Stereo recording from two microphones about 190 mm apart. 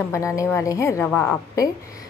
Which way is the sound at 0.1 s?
15° left (ahead or behind).